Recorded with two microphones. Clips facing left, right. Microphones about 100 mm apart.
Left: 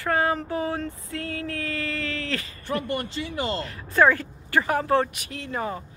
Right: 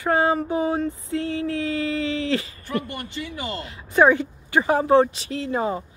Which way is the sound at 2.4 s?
35° left (ahead or behind).